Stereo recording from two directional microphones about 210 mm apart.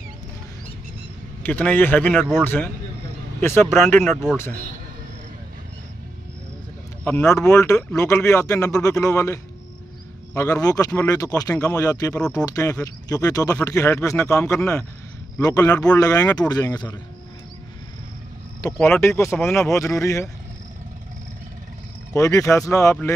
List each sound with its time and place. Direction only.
1.4 s speech: 10° left (ahead or behind)
2.1 s speech: 5° right (ahead or behind)
2.4 s a man's voice: 10° left (ahead or behind)
4.0 s speech: centre (ahead or behind)
7.1 s speech: 10° left (ahead or behind)
15.7 s speech: 5° left (ahead or behind)
16.0 s speech: 15° left (ahead or behind)
18.8 s speech: 10° left (ahead or behind)
22.1 s speech: 15° left (ahead or behind)